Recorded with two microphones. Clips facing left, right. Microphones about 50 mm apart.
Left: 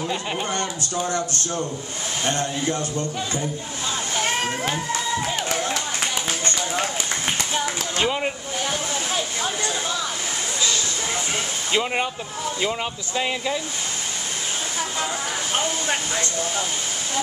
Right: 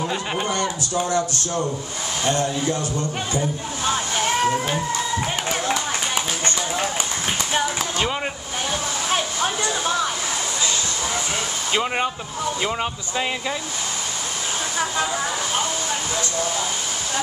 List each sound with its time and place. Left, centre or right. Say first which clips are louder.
0.0 s speech: right 2 dB; centre
0.9 s speech: right 3 dB; right
3.8 s slosh: right 4 dB; right
9.6 s a sound: right 3 dB; right
11.7 s speech: right 1 dB; centre